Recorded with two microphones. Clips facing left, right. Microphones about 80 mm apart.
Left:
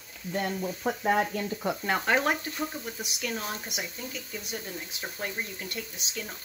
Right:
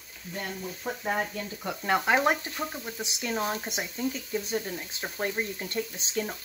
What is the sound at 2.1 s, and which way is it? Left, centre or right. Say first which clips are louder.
Speech: right 1 dB; centre.